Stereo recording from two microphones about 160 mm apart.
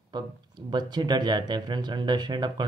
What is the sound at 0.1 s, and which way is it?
Speech, 30° right (ahead or behind).